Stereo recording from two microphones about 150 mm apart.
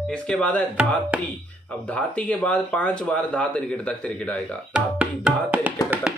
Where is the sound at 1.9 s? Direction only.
10° left (ahead or behind).